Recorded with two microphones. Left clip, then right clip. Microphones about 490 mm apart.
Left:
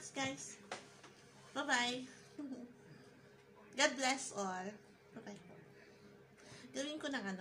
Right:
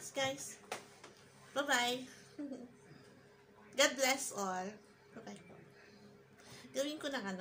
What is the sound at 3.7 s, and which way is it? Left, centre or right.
A woman's voice, left.